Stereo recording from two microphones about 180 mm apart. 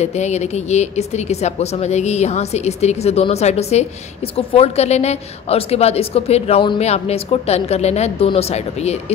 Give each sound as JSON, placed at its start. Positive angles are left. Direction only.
{"t": 0.0, "sound": "a woman's voice", "side_deg": 40}